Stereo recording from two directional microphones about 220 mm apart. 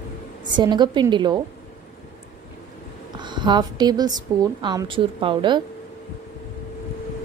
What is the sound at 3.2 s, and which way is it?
A woman's voice, 20° right (ahead or behind).